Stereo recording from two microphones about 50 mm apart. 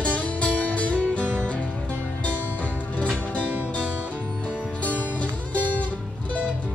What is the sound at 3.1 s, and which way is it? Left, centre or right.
Music, left.